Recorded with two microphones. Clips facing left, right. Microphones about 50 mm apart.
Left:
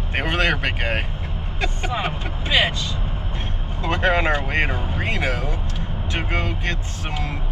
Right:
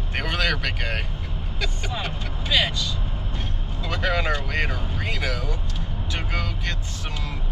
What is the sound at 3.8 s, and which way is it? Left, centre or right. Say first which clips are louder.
Speech: left 5 dB; left.